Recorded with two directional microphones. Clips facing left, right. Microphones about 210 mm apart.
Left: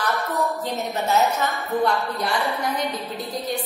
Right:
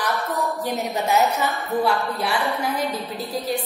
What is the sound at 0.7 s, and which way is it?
Speech, 15° right (ahead or behind).